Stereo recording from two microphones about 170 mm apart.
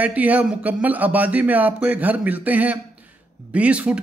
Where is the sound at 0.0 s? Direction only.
10° right (ahead or behind).